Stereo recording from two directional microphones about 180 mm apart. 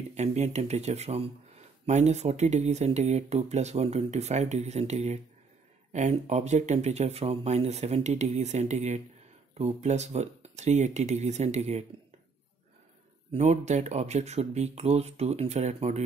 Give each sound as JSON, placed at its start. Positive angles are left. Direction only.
{"t": 0.1, "sound": "speech", "side_deg": -40}
{"t": 13.3, "sound": "speech", "side_deg": -40}